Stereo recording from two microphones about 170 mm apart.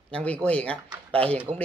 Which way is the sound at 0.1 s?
10° left (ahead or behind).